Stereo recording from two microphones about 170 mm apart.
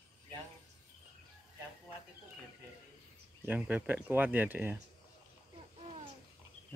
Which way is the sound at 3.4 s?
10° right (ahead or behind).